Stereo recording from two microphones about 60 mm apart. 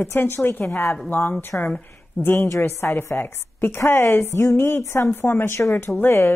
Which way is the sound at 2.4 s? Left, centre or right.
Left.